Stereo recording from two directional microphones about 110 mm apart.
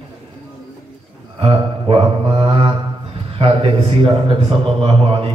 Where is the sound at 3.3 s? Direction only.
60° right (ahead or behind).